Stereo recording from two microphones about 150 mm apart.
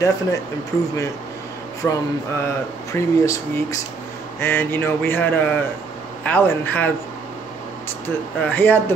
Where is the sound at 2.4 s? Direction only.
20° left (ahead or behind).